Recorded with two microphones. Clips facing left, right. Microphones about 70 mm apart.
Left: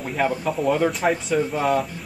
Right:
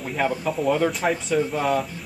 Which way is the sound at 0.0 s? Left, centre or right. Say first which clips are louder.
Left 1 dB; centre.